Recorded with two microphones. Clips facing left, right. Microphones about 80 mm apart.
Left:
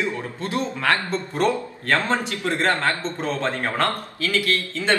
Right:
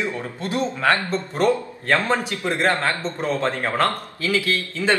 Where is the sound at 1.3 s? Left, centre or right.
Centre.